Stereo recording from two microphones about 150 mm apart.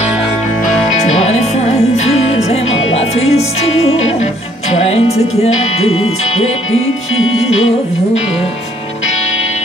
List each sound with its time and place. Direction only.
1.2 s music: 45° left (ahead or behind)